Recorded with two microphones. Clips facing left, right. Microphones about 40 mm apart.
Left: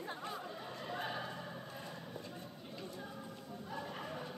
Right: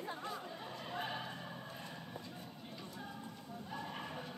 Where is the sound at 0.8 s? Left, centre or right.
Centre.